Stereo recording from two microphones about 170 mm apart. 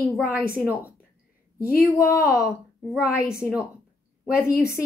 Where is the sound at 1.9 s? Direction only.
15° left (ahead or behind).